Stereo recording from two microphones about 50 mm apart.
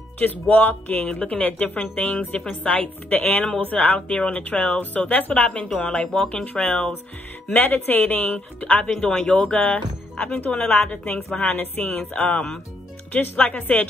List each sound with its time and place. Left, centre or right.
0.2 s speech: left
1.0 s speech: left
7.5 s speech: left
8.9 s speech: centre; by 11.9 s left
12.1 s speech: left
13.1 s speech: left